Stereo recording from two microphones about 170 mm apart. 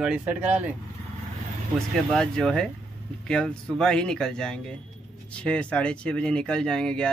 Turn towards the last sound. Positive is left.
turn(degrees=5)  # may be behind; listen again after turning